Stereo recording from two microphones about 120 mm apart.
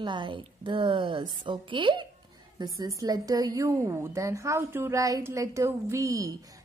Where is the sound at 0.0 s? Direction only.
40° right (ahead or behind).